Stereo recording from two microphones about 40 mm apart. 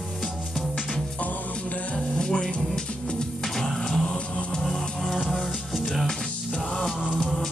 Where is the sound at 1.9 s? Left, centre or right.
Centre.